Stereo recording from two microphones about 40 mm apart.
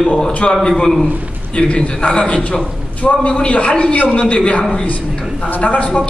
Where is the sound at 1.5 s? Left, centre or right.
Left.